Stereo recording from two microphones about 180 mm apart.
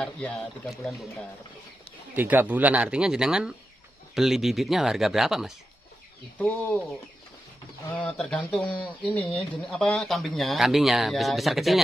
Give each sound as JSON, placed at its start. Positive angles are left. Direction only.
{"t": 0.0, "sound": "speech", "side_deg": 5}
{"t": 2.1, "sound": "speech", "side_deg": -10}
{"t": 6.3, "sound": "speech", "side_deg": 10}
{"t": 8.2, "sound": "speech", "side_deg": 5}